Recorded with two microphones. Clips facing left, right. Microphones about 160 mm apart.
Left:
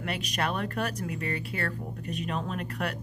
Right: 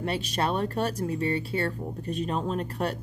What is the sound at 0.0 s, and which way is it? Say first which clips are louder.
Speech: right 3 dB; 30° right (ahead or behind).